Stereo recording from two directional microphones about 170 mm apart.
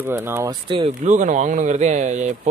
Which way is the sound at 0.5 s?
30° right (ahead or behind).